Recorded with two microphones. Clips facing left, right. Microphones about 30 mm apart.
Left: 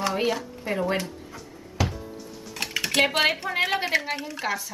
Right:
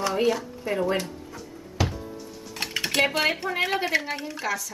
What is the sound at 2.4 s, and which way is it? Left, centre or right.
Typing, centre.